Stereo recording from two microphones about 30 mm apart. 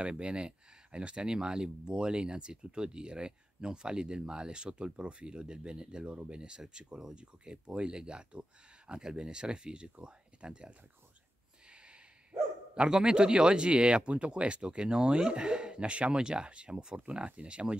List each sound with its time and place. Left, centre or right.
0.0 s speech: right
6.0 s speech: right
6.3 s speech: right
7.2 s speech: right
12.8 s speech: right